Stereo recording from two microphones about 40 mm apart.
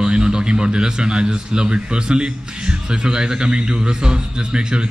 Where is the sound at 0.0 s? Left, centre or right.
Centre.